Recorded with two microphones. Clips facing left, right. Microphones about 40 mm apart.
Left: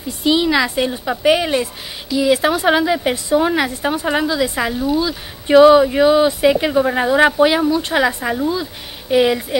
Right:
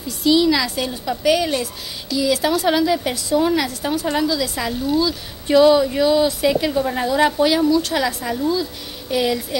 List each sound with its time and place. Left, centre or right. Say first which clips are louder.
0.2 s speech: left 1 dB; left